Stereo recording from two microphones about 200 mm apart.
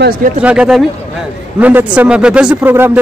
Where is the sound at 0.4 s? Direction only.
5° right (ahead or behind).